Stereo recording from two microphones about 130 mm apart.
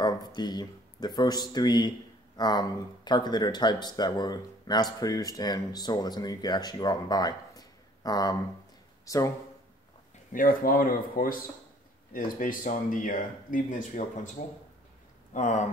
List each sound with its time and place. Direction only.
0.0 s speech: 30° left (ahead or behind)
10.3 s speech: 90° left
15.3 s speech: 75° left (ahead or behind)